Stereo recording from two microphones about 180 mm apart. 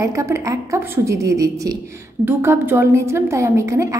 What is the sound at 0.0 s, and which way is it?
A woman's voice, 15° right (ahead or behind).